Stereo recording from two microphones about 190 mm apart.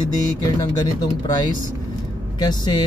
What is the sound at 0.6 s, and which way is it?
Speech, 20° left (ahead or behind).